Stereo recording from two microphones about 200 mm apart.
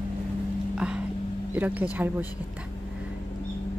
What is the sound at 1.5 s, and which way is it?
Speech, 10° right (ahead or behind).